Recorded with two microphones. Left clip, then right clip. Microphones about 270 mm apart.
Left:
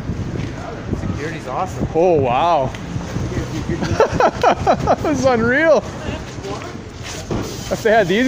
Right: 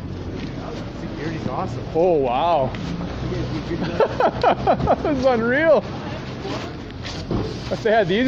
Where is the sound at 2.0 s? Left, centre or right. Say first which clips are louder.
Left 3 dB; left.